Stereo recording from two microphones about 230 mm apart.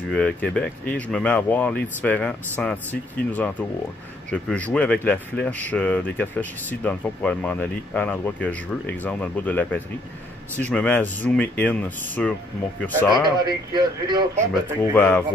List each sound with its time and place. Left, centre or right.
0.1 s speech: centre
13.7 s speech: centre
15.0 s speech: centre